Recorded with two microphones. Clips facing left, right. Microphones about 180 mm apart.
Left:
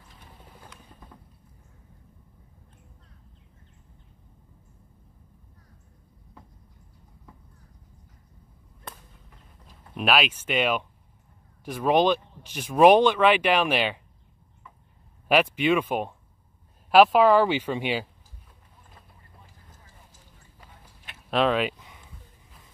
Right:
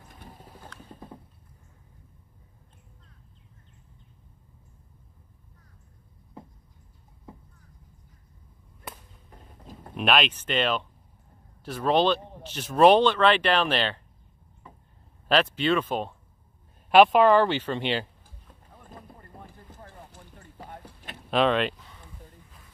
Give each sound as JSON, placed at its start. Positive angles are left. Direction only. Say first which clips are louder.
{"t": 9.3, "sound": "a sound", "louder": "right 8 dB", "side_deg": -40}
{"t": 9.9, "sound": "speech", "louder": "even", "side_deg": 5}
{"t": 15.2, "sound": "speech", "louder": "left 2 dB", "side_deg": 10}
{"t": 16.9, "sound": "speech", "louder": "even", "side_deg": 0}
{"t": 18.7, "sound": "boat", "louder": "right 11 dB", "side_deg": -60}
{"t": 19.1, "sound": "clip-clop", "louder": "right 9 dB", "side_deg": -60}
{"t": 21.3, "sound": "a sound", "louder": "even", "side_deg": 0}